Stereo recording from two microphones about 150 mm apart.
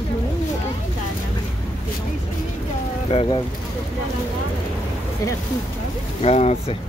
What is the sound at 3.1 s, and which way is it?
Speech, 40° left (ahead or behind).